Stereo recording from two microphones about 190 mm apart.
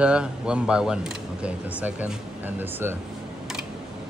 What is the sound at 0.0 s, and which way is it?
Speech, 5° right (ahead or behind).